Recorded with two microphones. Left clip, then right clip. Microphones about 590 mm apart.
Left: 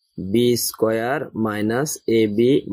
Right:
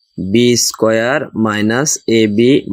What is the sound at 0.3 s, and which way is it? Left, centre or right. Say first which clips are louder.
Speech: right 7 dB; left.